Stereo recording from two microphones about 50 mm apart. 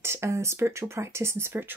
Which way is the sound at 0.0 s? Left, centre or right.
Right.